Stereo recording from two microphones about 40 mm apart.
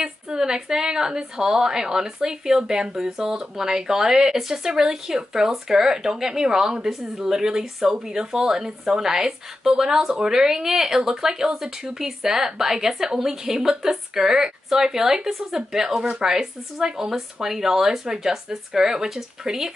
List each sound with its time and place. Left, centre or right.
0.0 s speech: centre
16.3 s speech: centre